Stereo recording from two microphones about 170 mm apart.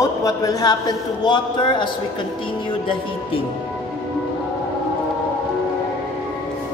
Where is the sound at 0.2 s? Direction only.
20° left (ahead or behind).